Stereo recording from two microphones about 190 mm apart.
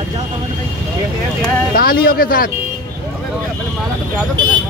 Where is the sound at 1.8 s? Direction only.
55° left (ahead or behind).